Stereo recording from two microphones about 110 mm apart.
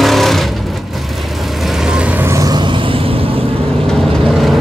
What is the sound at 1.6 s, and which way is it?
Vehicle, 5° right (ahead or behind).